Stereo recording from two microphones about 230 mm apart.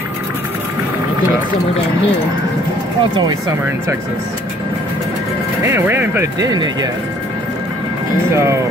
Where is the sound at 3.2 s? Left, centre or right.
Centre.